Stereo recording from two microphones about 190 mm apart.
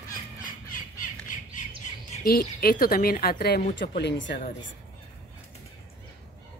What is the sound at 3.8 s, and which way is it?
Speech, 65° left (ahead or behind).